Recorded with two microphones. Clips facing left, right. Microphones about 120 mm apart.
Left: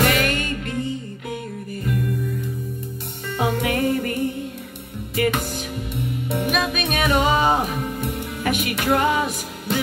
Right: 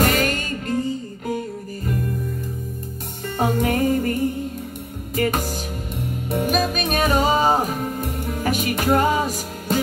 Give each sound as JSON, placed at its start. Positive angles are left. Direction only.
{"t": 0.0, "sound": "music", "side_deg": -45}
{"t": 3.3, "sound": "music", "side_deg": -45}